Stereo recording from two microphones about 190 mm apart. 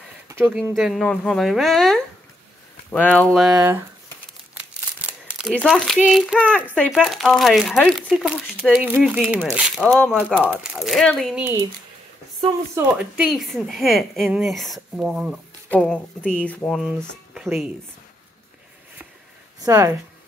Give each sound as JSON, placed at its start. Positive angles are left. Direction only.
{"t": 0.3, "sound": "a sound", "side_deg": -10}
{"t": 0.7, "sound": "a woman's voice", "side_deg": 0}
{"t": 3.5, "sound": "speech", "side_deg": -10}
{"t": 5.5, "sound": "a woman's voice", "side_deg": 5}
{"t": 10.1, "sound": "a woman's voice", "side_deg": -10}
{"t": 12.7, "sound": "a woman's voice", "side_deg": -5}
{"t": 15.7, "sound": "a woman's voice", "side_deg": 5}
{"t": 19.6, "sound": "speech", "side_deg": -15}